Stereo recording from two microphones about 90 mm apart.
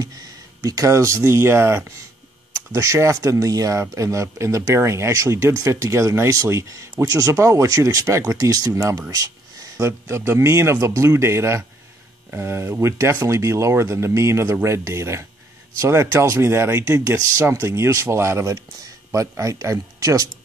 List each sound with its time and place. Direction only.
0.6 s speech: 40° right (ahead or behind)